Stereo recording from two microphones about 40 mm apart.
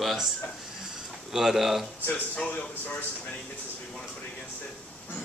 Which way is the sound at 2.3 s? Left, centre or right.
Left.